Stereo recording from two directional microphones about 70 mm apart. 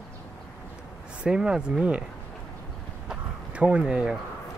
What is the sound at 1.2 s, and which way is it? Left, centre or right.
Speech, centre.